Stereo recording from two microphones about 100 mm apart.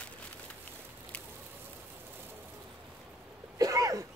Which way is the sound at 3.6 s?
35° right (ahead or behind).